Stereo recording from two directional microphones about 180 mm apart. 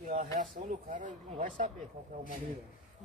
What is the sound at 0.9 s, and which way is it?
Speech, 45° right (ahead or behind).